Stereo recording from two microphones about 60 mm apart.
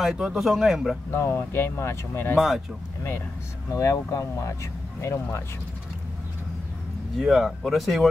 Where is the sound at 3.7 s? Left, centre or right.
Left.